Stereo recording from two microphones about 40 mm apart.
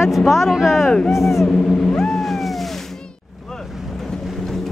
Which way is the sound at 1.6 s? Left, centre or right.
Centre.